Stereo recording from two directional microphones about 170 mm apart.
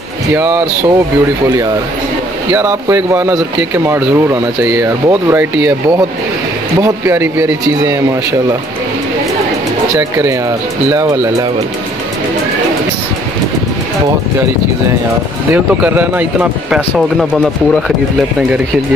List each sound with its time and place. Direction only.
0.3 s speech: 10° right (ahead or behind)
2.5 s a man's voice: 15° right (ahead or behind)
9.9 s speech: 15° right (ahead or behind)
15.5 s speech: 10° right (ahead or behind)